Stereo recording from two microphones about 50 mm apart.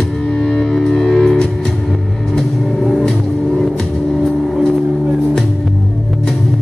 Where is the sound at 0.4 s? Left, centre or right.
Centre.